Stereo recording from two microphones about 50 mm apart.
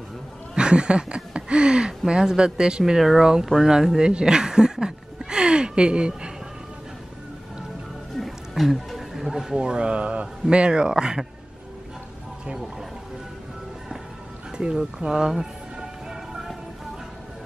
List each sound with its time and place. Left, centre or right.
0.6 s speech: centre
2.8 s speech: centre
8.2 s music: centre
9.6 s speech: centre
15.0 s music: centre